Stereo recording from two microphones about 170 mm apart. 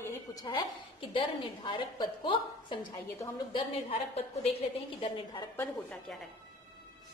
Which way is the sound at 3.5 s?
35° left (ahead or behind).